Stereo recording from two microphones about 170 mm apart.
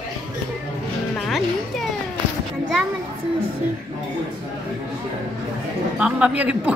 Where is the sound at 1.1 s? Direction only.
Centre (ahead or behind).